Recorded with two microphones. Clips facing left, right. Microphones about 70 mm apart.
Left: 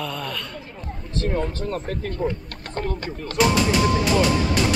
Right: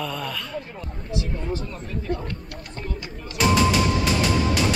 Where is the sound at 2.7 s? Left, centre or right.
Left.